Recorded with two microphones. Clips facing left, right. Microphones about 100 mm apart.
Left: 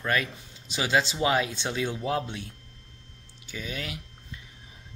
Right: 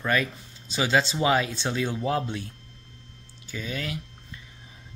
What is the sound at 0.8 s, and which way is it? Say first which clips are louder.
Speech: right 2 dB; 10° left (ahead or behind).